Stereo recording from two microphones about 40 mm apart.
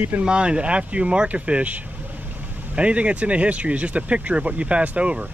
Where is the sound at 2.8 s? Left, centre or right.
Right.